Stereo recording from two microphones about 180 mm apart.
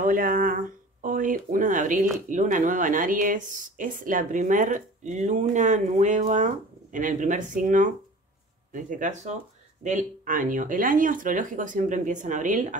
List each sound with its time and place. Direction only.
0.0 s speech: 55° right (ahead or behind)